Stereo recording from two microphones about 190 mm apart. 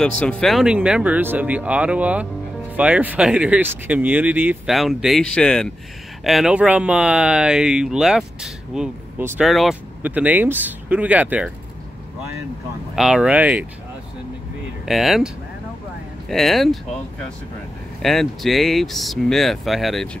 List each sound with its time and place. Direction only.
0.0 s speech: 5° left (ahead or behind)
12.9 s speech: 5° right (ahead or behind)
14.9 s speech: centre (ahead or behind)
18.0 s speech: centre (ahead or behind)